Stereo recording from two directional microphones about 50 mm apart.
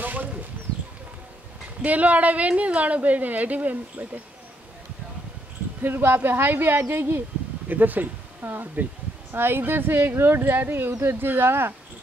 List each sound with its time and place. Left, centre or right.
0.0 s a sound: right
1.8 s a woman's voice: right
5.8 s speech: right